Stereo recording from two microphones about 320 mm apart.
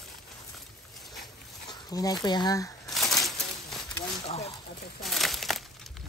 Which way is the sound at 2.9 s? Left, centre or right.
Centre.